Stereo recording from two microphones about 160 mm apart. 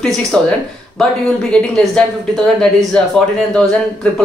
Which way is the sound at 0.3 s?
5° left (ahead or behind).